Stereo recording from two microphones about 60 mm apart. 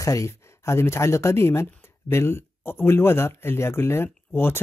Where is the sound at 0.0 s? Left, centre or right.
Left.